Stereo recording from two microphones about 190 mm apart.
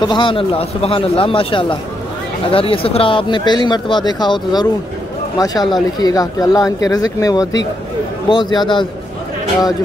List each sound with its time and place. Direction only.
0.0 s speech: 25° left (ahead or behind)